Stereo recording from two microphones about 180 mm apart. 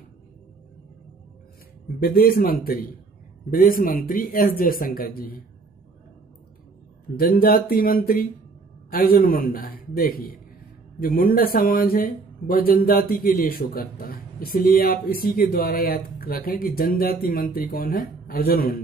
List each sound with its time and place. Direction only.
2.0 s a man's voice: 55° left (ahead or behind)
7.2 s a man's voice: 55° left (ahead or behind)